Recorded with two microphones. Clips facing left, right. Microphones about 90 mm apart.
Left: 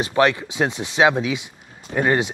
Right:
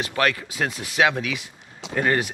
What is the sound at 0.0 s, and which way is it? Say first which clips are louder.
Speech: left 5 dB; 20° left (ahead or behind).